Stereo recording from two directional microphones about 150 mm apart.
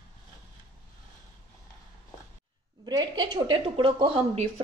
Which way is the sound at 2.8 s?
25° right (ahead or behind).